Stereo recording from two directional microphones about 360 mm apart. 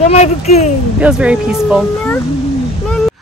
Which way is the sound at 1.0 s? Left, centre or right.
Centre.